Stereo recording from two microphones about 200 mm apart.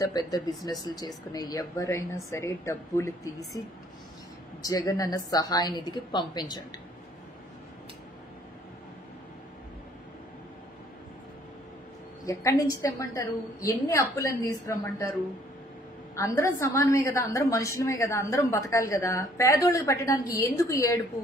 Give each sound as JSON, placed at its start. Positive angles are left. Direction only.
{"t": 0.0, "sound": "a woman's voice", "side_deg": 20}
{"t": 4.6, "sound": "a woman's voice", "side_deg": 20}
{"t": 12.3, "sound": "a woman's voice", "side_deg": 15}
{"t": 16.2, "sound": "a woman's voice", "side_deg": 15}